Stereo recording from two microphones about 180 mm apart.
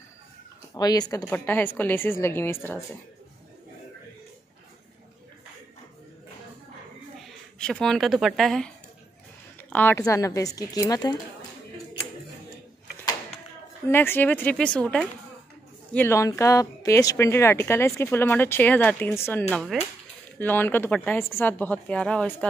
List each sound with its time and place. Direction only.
0.7 s speech: 20° left (ahead or behind)
7.5 s speech: 5° left (ahead or behind); by 11.1 s 20° left (ahead or behind)
13.8 s speech: 10° left (ahead or behind)
19.5 s speech: centre (ahead or behind)